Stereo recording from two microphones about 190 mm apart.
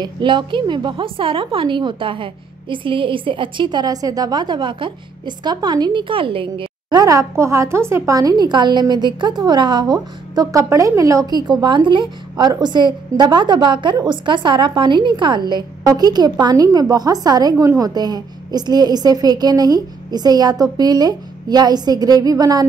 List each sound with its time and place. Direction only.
0.0 s a woman's voice: 25° right (ahead or behind)